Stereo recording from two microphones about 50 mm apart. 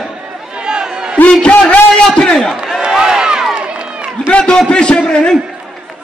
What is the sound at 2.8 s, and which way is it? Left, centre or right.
Crowd, centre.